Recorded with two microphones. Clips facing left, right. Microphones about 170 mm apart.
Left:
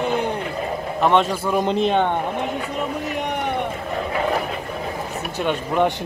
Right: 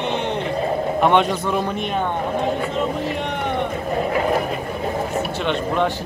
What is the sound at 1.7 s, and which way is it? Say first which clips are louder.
Speech: left 6 dB; 35° left (ahead or behind).